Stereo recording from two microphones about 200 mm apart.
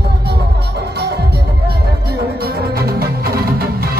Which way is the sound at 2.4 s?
50° right (ahead or behind).